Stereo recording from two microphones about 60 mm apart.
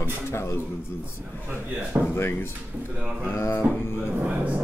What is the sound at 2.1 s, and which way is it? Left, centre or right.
Speech, left.